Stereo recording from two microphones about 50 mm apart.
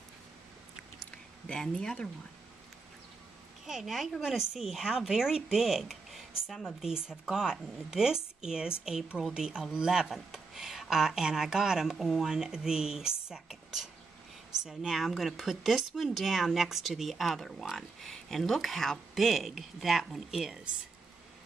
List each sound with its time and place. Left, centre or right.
1.5 s speech: centre
3.6 s speech: centre